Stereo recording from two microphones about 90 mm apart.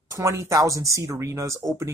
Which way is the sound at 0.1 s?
35° right (ahead or behind).